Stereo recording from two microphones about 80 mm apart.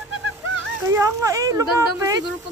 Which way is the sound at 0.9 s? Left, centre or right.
Right.